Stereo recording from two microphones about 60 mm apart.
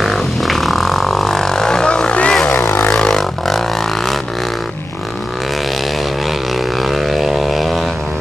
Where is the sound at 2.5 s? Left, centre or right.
Left.